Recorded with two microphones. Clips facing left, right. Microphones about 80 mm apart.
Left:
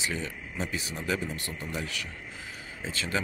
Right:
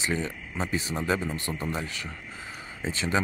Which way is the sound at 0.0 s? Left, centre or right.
Right.